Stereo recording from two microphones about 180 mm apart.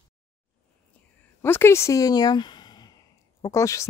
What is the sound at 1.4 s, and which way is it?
Speech, 15° left (ahead or behind).